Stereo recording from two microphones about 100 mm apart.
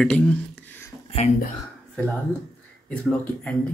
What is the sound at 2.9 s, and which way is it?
Speech, 10° left (ahead or behind).